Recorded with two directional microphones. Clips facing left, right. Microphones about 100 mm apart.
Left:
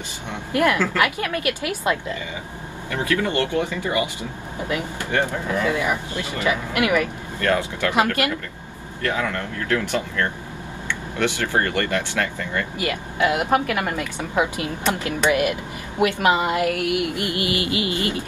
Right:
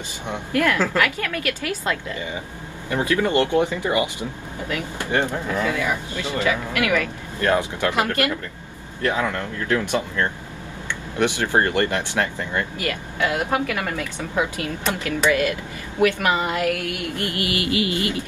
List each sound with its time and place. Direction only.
0.5 s a woman's voice: 15° left (ahead or behind)
2.9 s speech: 20° right (ahead or behind)
5.7 s a woman's voice: 15° left (ahead or behind)
7.3 s speech: 20° right (ahead or behind)
9.7 s speech: 20° right (ahead or behind)
12.7 s a woman's voice: 20° left (ahead or behind)